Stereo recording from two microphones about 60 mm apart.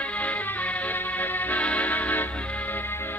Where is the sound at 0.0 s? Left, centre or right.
Left.